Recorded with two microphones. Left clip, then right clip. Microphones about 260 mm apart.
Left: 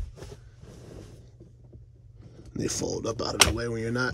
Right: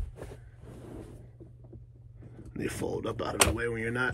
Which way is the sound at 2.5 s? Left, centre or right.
Centre.